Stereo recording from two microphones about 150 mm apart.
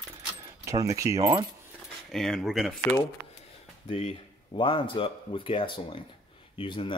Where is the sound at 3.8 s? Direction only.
35° left (ahead or behind).